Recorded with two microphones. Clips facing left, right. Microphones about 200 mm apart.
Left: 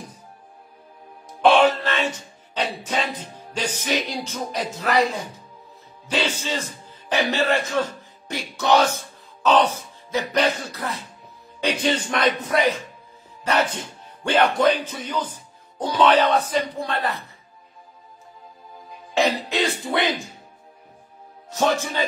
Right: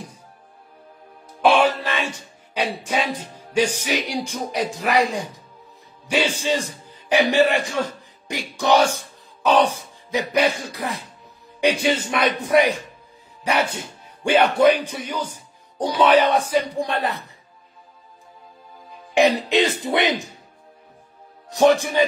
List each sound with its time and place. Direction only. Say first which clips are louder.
1.4 s a sound: left 1 dB; 10° right (ahead or behind)
6.0 s a man's voice: right 4 dB; 10° right (ahead or behind)
19.1 s speech: right 4 dB; 15° right (ahead or behind)
21.5 s speech: right 6 dB; 15° right (ahead or behind)